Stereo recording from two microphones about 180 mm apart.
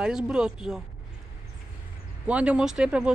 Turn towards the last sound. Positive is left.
turn(degrees=-5)  # may be behind; listen again after turning